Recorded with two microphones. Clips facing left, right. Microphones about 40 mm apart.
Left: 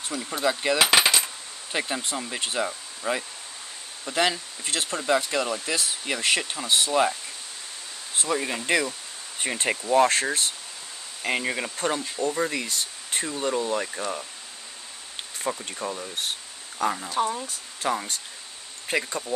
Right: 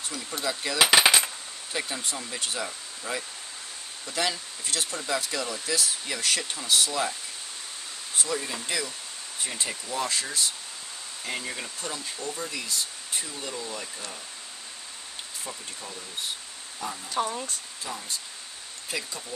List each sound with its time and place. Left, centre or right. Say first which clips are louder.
0.1 s speech: left 6 dB; centre
0.7 s coin: right 2 dB; centre
1.7 s speech: left 4 dB; left
8.3 s speech: left 8 dB; left
15.4 s speech: left 12 dB; left
17.1 s speech: left 3 dB; centre
17.8 s speech: left 9 dB; left
18.9 s speech: left 8 dB; left